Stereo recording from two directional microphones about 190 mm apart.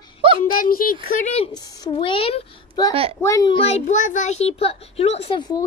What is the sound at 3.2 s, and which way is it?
Speech, 15° left (ahead or behind).